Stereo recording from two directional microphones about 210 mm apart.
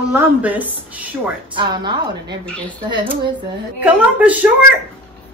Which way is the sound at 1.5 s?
20° right (ahead or behind).